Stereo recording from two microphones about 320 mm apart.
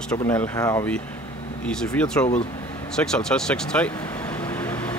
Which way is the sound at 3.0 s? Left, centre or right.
Centre.